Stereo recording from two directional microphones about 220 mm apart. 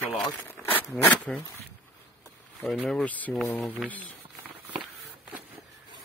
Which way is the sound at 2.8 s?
Centre (ahead or behind).